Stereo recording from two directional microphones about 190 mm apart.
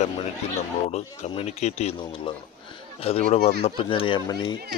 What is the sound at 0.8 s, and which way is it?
A man's voice, 35° left (ahead or behind).